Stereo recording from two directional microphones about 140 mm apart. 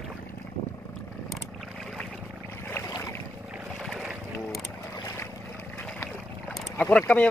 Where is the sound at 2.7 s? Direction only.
20° left (ahead or behind).